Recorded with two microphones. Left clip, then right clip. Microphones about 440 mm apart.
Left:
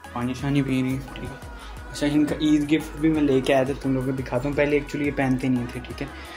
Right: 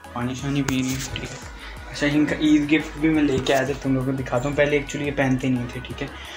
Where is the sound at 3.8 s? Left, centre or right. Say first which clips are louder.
Right 2 dB; left.